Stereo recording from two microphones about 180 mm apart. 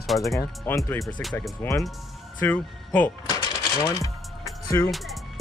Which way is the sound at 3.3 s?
20° left (ahead or behind).